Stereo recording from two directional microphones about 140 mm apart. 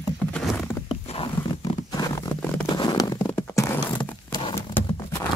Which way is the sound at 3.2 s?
20° left (ahead or behind).